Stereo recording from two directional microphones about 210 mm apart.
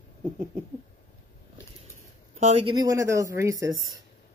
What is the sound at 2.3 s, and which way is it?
Speech, 30° right (ahead or behind).